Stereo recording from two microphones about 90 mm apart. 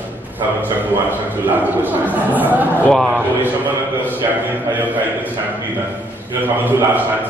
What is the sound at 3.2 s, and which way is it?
Speech, 20° right (ahead or behind).